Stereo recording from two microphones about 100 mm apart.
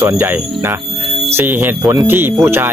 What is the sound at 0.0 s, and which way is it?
Speech, 20° right (ahead or behind).